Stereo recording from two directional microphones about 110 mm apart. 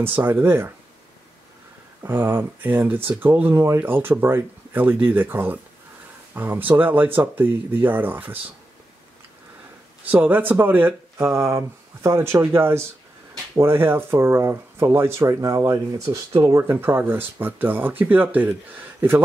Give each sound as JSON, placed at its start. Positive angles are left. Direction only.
{"t": 0.0, "sound": "speech", "side_deg": -15}
{"t": 2.0, "sound": "speech", "side_deg": -20}
{"t": 10.1, "sound": "speech", "side_deg": -15}